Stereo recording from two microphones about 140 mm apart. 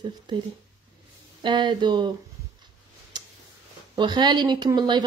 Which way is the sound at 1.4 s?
35° right (ahead or behind).